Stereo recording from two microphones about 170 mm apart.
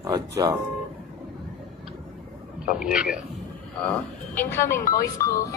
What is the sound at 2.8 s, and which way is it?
Speech, 5° right (ahead or behind).